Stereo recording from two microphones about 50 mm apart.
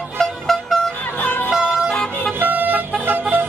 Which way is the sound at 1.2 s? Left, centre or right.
Left.